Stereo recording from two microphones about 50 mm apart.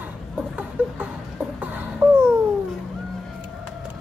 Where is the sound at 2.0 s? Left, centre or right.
Right.